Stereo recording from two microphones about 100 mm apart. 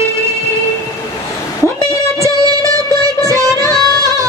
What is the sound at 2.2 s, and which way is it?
Music, 35° right (ahead or behind).